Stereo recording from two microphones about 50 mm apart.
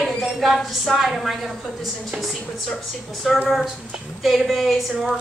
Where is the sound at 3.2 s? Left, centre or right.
Centre.